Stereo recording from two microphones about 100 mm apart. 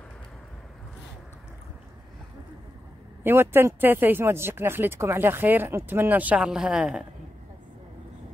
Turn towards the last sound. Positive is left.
turn(degrees=-5)  # may be behind; listen again after turning